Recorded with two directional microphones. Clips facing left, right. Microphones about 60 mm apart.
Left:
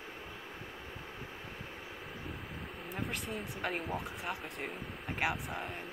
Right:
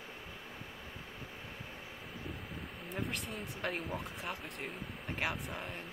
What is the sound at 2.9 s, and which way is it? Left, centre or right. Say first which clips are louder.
Speech: left 1 dB; centre.